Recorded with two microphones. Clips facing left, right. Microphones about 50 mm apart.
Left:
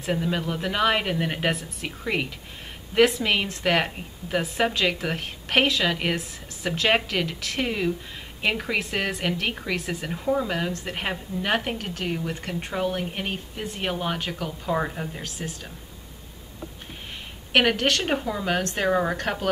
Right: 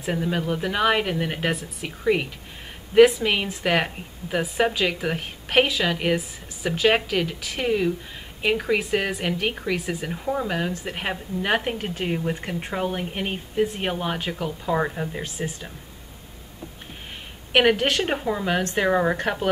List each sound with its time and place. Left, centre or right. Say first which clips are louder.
0.0 s speech: right 1 dB; centre
11.9 s speech: right 3 dB; right
17.5 s speech: right 2 dB; centre